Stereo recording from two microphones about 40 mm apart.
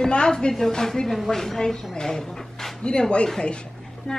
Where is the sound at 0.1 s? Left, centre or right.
Left.